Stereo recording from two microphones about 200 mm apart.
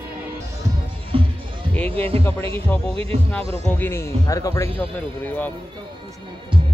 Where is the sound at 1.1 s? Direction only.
25° right (ahead or behind).